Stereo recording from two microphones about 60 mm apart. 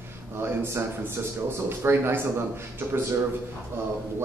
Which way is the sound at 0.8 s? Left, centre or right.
Right.